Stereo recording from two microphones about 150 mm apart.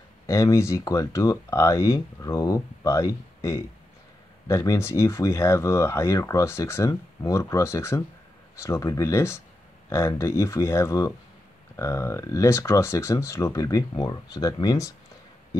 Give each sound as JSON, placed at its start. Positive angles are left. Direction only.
{"t": 0.3, "sound": "speech", "side_deg": 20}